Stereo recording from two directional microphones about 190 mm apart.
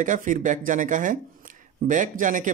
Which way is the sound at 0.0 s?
45° right (ahead or behind).